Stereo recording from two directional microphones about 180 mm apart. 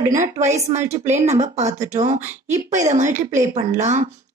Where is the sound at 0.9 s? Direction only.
40° right (ahead or behind).